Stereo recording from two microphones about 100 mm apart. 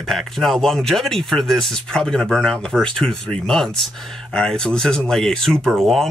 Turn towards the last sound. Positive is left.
turn(degrees=0)  # may be behind; listen again after turning